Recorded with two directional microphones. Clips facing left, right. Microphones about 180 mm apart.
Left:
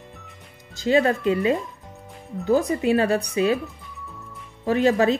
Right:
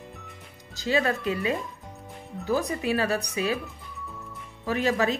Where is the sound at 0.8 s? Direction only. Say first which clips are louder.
Left 6 dB; 35° left (ahead or behind).